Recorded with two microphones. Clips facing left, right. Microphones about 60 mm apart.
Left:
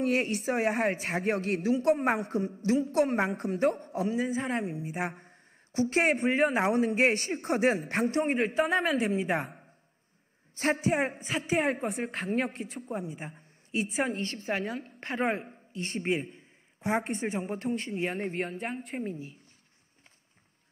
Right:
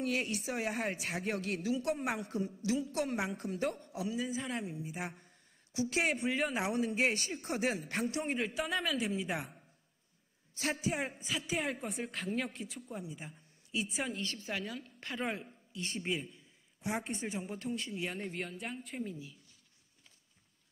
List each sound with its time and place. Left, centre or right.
0.0 s a woman's voice: left